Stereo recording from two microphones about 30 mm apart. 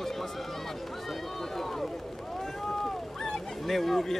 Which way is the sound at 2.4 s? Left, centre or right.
Centre.